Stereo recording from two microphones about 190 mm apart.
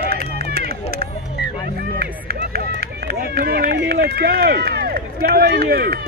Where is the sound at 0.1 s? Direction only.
55° right (ahead or behind).